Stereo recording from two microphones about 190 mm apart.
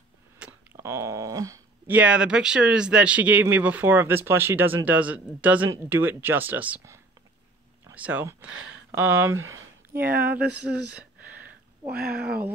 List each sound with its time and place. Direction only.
0.4 s speech: 10° right (ahead or behind)
9.9 s a sound: 10° right (ahead or behind)
12.1 s speech: 10° right (ahead or behind)